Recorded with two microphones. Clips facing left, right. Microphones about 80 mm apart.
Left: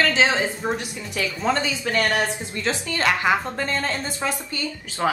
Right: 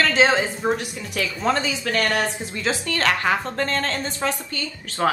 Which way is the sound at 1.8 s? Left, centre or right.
Left.